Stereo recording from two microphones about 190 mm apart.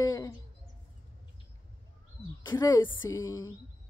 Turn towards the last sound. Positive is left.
turn(degrees=15)  # may be behind; listen again after turning